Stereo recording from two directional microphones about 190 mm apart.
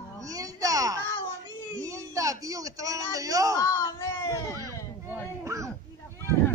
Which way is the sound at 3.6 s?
15° left (ahead or behind).